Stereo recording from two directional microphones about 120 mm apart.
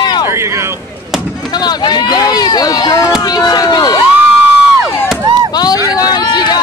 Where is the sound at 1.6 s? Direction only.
35° left (ahead or behind).